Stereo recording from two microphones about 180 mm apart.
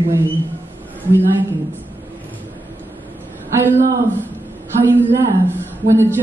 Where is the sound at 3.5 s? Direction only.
15° right (ahead or behind).